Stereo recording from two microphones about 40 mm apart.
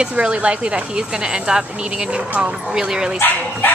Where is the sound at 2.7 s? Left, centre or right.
Centre.